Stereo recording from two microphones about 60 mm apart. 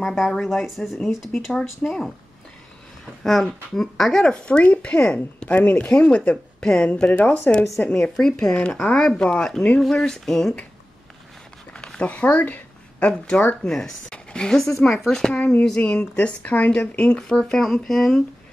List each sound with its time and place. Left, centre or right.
0.0 s speech: centre
3.3 s speech: centre
5.5 s speech: left
6.6 s speech: centre
9.8 s speech: centre
11.7 s a sound: centre
13.1 s a woman's voice: centre
15.8 s speech: left; by 18.2 s centre